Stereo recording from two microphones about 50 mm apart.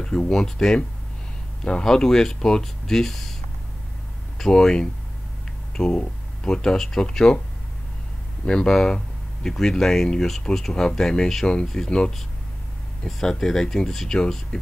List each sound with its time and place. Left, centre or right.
0.0 s speech: centre
4.4 s speech: centre
8.5 s speech: centre